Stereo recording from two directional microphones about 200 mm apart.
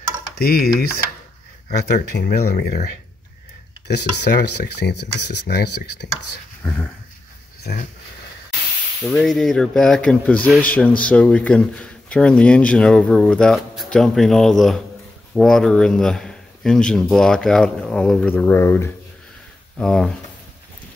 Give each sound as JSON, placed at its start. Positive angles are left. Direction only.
{"t": 0.4, "sound": "speech", "side_deg": 50}
{"t": 2.1, "sound": "speech", "side_deg": 50}
{"t": 3.8, "sound": "speech", "side_deg": 55}
{"t": 6.6, "sound": "dog", "side_deg": 5}
{"t": 7.6, "sound": "speech", "side_deg": 40}
{"t": 9.0, "sound": "speech", "side_deg": 0}